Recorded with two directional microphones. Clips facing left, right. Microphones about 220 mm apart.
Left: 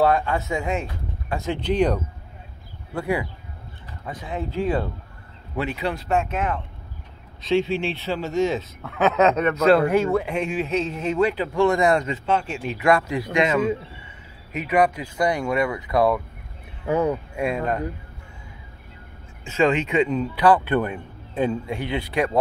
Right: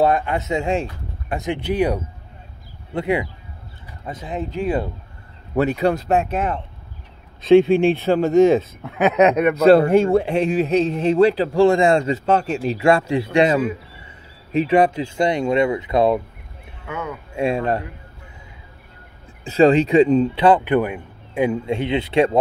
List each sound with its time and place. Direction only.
0.0 s speech: 20° right (ahead or behind)
1.3 s speech: 15° right (ahead or behind)
2.9 s speech: 20° right (ahead or behind)
5.5 s speech: 45° right (ahead or behind)
7.4 s speech: 50° right (ahead or behind)
8.8 s speech: 15° right (ahead or behind)
9.7 s a man's voice: 30° right (ahead or behind)
12.3 s a man's voice: 40° right (ahead or behind); by 16.2 s 25° right (ahead or behind)
16.8 s speech: 35° left (ahead or behind)
17.4 s speech: 30° right (ahead or behind)
19.4 s speech: 35° right (ahead or behind); by 21.5 s 10° right (ahead or behind)
21.6 s speech: 20° right (ahead or behind)